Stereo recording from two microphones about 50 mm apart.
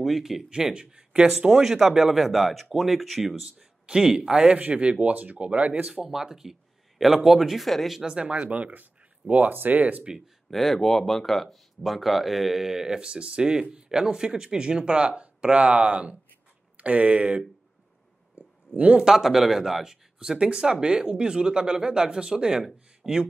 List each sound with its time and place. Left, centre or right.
0.0 s speech: centre
3.8 s speech: centre
4.5 s speech: right
5.9 s speech: centre
8.0 s speech: right
10.5 s speech: centre; by 17.4 s right
18.4 s a sound: right
18.8 s speech: right
19.0 s speech: centre